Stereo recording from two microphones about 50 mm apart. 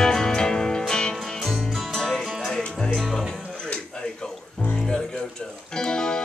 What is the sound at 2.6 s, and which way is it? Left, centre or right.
Music, centre.